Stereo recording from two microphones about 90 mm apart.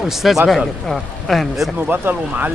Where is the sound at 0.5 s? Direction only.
Centre (ahead or behind).